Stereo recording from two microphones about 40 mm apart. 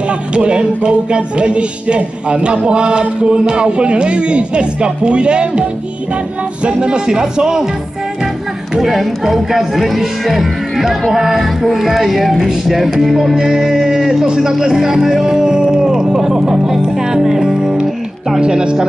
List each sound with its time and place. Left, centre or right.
0.3 s music: right
8.7 s speech: centre
11.1 s music: centre
13.3 s speech: centre
16.9 s music: centre